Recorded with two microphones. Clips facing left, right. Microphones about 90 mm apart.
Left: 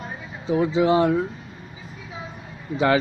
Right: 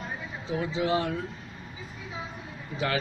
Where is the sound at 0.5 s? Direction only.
25° left (ahead or behind).